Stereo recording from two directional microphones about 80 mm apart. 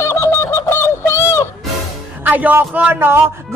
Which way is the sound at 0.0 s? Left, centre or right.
Left.